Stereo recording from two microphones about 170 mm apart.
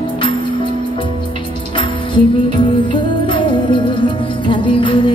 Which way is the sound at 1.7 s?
30° left (ahead or behind).